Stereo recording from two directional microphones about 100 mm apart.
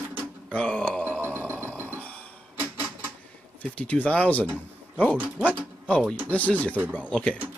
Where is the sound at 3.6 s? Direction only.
15° left (ahead or behind).